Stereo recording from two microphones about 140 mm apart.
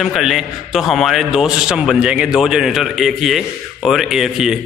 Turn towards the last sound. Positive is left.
turn(degrees=-5)  # may be behind; listen again after turning